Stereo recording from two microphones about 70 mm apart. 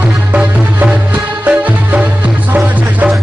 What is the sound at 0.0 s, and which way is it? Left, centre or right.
Music, right.